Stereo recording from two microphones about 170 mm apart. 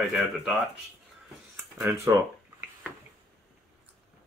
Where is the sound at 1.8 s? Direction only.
15° right (ahead or behind).